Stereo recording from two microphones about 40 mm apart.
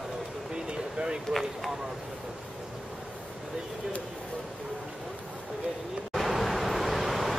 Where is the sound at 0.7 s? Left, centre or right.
Right.